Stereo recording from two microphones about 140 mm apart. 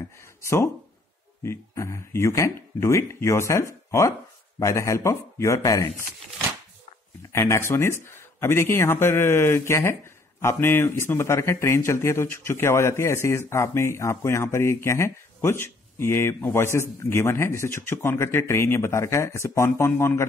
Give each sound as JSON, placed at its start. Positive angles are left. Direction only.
{"t": 0.4, "sound": "a man's voice", "side_deg": 20}
{"t": 7.3, "sound": "a man's voice", "side_deg": 20}